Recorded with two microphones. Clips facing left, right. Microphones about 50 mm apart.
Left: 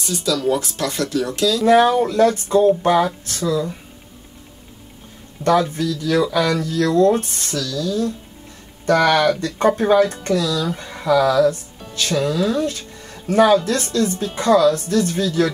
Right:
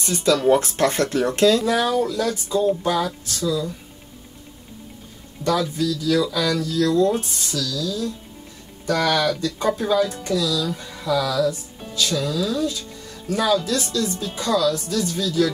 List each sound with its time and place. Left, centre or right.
0.0 s speech: right
1.6 s speech: left
5.4 s speech: left